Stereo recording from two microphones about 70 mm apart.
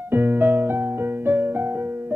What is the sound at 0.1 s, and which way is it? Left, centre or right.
Music, right.